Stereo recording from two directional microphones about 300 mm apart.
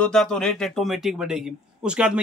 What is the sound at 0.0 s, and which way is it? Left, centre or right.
Speech, centre.